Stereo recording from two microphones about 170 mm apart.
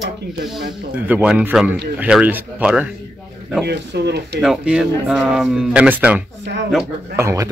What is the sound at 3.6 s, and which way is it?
Speech, 80° right.